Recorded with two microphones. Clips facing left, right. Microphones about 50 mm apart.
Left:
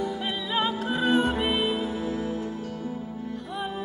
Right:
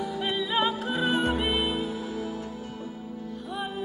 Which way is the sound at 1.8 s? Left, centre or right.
Left.